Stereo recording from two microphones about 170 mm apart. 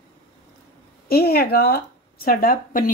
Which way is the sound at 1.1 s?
70° left (ahead or behind).